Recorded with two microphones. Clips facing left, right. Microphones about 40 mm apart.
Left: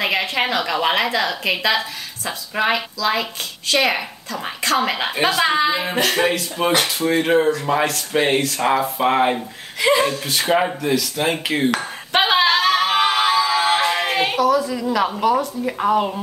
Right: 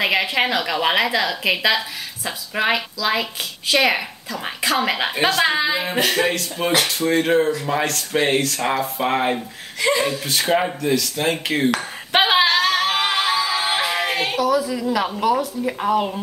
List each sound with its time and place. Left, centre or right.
0.0 s a woman's voice: centre
12.1 s a sound: centre
12.4 s a capella: centre